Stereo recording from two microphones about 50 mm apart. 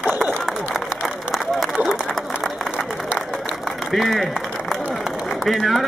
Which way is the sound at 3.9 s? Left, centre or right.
Centre.